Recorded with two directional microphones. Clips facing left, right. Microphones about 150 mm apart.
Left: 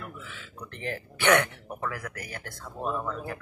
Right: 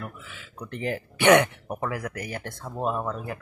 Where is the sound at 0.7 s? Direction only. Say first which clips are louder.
Right 6 dB; 15° right (ahead or behind).